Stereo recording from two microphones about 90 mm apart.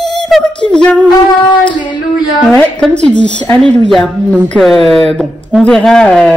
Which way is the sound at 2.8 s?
15° left (ahead or behind).